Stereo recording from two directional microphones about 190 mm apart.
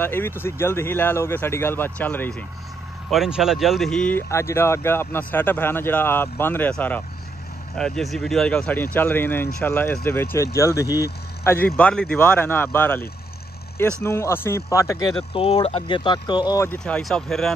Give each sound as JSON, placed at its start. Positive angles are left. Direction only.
{"t": 0.0, "sound": "speech", "side_deg": 10}
{"t": 3.1, "sound": "speech", "side_deg": -5}
{"t": 15.3, "sound": "speech", "side_deg": 30}